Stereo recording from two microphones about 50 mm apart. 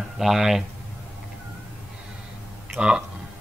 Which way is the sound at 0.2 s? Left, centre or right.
Centre.